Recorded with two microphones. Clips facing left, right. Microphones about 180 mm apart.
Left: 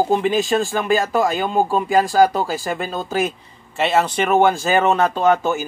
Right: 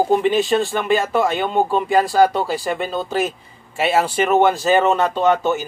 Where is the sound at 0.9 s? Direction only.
40° left (ahead or behind).